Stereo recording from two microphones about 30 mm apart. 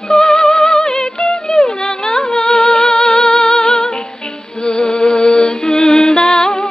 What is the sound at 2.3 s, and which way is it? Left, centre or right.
Music, centre.